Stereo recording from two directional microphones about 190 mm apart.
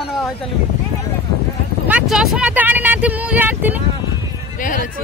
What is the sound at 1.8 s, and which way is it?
Speech, 5° right (ahead or behind).